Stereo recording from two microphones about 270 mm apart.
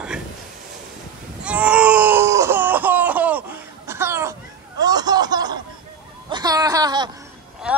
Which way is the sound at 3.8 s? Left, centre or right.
Centre.